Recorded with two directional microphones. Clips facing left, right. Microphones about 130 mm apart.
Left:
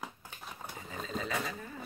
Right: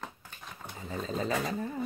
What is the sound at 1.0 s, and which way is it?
Speech, 35° right (ahead or behind).